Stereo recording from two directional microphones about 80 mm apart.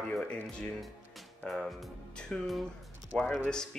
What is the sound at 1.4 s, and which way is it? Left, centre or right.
Speech, centre.